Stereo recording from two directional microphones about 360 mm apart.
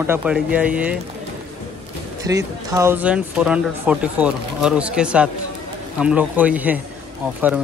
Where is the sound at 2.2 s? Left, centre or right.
Centre.